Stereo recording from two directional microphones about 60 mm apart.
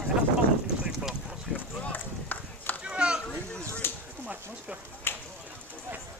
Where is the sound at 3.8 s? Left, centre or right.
Left.